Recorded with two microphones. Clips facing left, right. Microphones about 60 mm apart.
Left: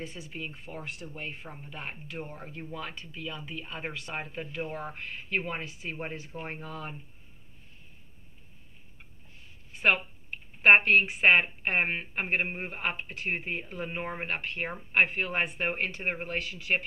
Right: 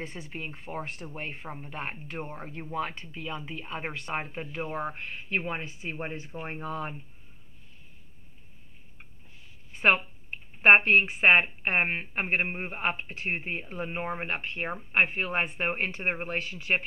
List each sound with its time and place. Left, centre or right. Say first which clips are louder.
0.0 s speech: right 1 dB; right
6.3 s speech: right 1 dB; centre
6.6 s speech: right 5 dB; right
9.8 s speech: right 2 dB; right